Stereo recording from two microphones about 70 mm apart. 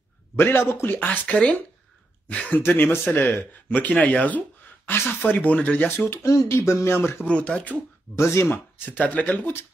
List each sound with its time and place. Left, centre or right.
0.4 s speech: left
0.9 s speech: left
5.9 s speech: left
7.2 s speech: centre
8.2 s speech: left